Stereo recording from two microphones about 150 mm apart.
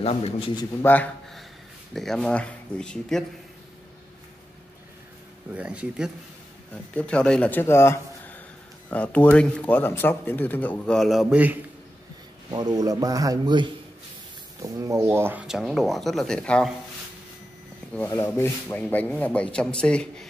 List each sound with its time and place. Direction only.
0.0 s a man's voice: 40° left (ahead or behind)
0.8 s speech: 10° left (ahead or behind)
5.5 s speech: 10° right (ahead or behind)
6.9 s speech: 10° left (ahead or behind); by 11.5 s 5° right (ahead or behind)
12.4 s speech: 25° right (ahead or behind)
15.4 s speech: 5° right (ahead or behind)
18.1 s speech: 15° left (ahead or behind)